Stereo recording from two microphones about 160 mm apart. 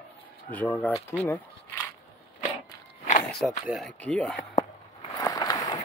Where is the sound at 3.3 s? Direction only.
Centre (ahead or behind).